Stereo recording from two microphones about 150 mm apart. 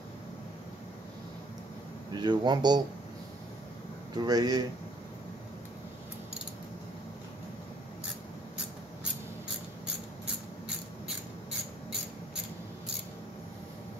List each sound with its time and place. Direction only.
2.1 s speech: 30° right (ahead or behind)
4.1 s speech: 25° right (ahead or behind)